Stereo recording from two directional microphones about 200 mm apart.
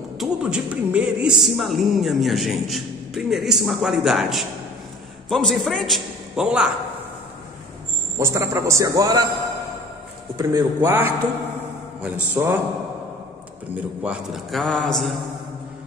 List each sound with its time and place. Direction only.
0.2 s speech: 5° right (ahead or behind)
8.2 s a man's voice: 15° right (ahead or behind)
10.3 s a man's voice: 15° right (ahead or behind)
13.7 s speech: 5° right (ahead or behind)